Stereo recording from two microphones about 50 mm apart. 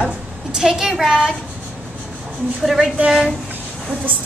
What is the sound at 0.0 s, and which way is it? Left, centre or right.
Speech, centre.